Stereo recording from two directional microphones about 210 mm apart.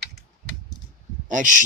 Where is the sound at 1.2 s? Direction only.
35° right (ahead or behind).